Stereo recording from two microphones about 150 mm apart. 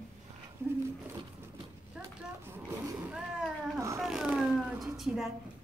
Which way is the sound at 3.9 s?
5° right (ahead or behind).